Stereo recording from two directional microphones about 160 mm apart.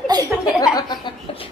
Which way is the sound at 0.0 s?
25° right (ahead or behind).